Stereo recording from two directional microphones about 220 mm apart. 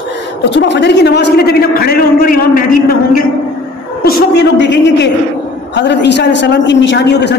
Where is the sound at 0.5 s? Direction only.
55° left (ahead or behind).